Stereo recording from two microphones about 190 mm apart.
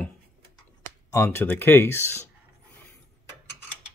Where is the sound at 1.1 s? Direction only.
15° left (ahead or behind).